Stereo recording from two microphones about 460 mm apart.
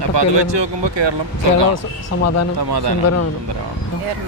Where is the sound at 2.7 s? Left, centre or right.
Right.